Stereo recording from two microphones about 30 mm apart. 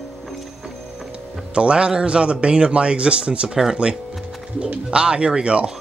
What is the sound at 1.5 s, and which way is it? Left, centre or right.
Speech, right.